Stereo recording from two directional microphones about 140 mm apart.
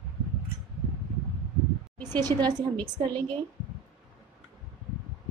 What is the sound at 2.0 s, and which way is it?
Speech, 30° right (ahead or behind).